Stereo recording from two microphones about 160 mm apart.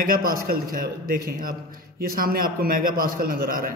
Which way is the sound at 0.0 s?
65° right (ahead or behind).